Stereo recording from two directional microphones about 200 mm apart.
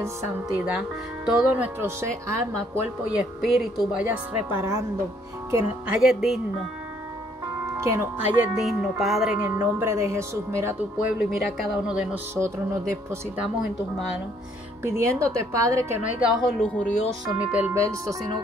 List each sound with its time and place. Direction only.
0.6 s speech: 5° right (ahead or behind)
3.2 s speech: centre (ahead or behind)
5.9 s speech: centre (ahead or behind)
7.7 s speech: 15° right (ahead or behind)
11.2 s speech: centre (ahead or behind)
14.8 s speech: 15° right (ahead or behind); by 17.0 s 5° left (ahead or behind)
17.4 s speech: 5° right (ahead or behind)